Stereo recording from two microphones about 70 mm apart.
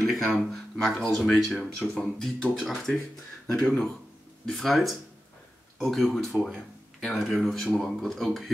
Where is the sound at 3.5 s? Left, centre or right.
Centre.